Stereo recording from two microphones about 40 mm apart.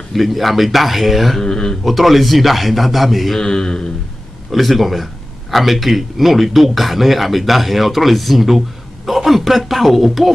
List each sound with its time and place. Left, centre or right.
0.1 s a man's voice: centre
1.4 s speech: centre
1.9 s a man's voice: centre
3.3 s speech: centre
4.5 s a man's voice: centre